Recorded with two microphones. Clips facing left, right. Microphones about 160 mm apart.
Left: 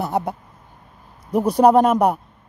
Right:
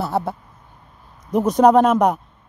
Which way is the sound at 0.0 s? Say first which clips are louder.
Even; 20° left (ahead or behind).